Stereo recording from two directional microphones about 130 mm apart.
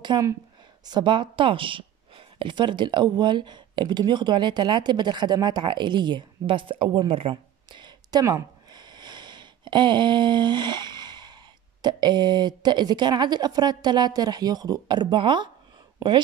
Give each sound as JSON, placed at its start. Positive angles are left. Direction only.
{"t": 0.1, "sound": "speech", "side_deg": -35}
{"t": 16.0, "sound": "speech", "side_deg": -25}